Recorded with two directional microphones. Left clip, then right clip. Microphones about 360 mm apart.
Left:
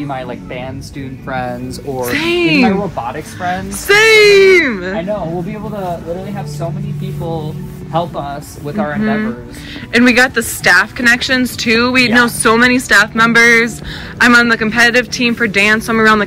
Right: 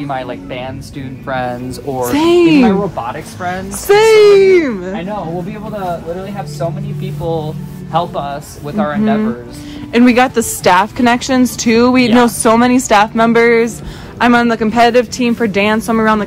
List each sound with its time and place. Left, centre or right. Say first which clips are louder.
0.1 s speech: right 2 dB; centre
7.9 s speech: right 2 dB; centre